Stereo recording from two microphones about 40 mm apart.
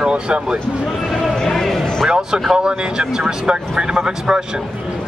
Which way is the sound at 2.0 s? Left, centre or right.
Right.